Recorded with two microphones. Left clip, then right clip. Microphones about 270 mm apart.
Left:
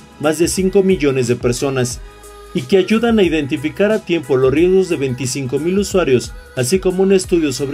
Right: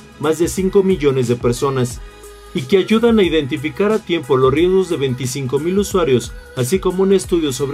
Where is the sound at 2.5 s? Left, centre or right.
Centre.